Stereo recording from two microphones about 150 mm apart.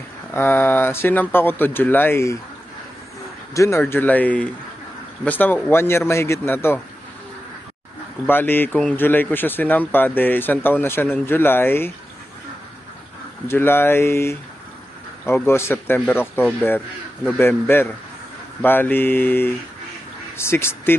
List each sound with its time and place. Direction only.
0.3 s speech: 15° left (ahead or behind)
3.5 s speech: 20° left (ahead or behind)
8.3 s speech: 15° left (ahead or behind)
13.5 s speech: 15° left (ahead or behind)